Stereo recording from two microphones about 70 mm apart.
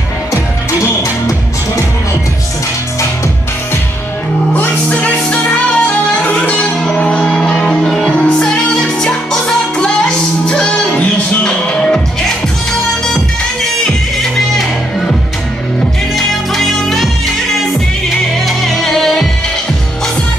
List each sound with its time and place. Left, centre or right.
4.6 s music: left
13.8 s music: centre
16.2 s music: centre
18.6 s music: centre